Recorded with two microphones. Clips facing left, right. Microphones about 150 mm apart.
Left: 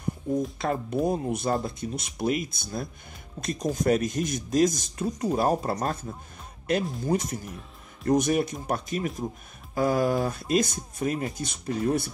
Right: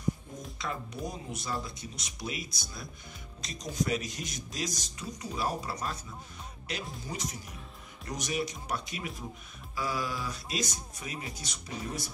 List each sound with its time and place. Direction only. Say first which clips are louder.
0.6 s speech: left 11 dB; 55° left (ahead or behind)
7.4 s music: left 6 dB; centre (ahead or behind)
8.1 s speech: left 11 dB; 50° left (ahead or behind)